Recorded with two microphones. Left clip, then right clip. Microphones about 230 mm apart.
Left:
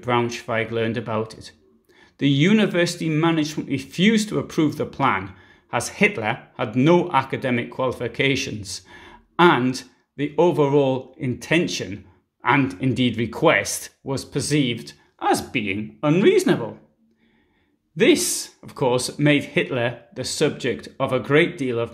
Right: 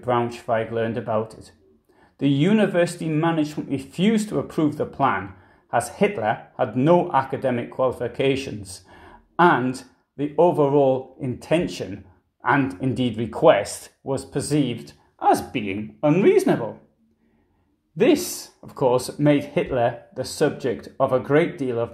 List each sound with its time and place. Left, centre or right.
0.0 s speech: left
13.5 s speech: left
14.5 s speech: left
17.9 s speech: centre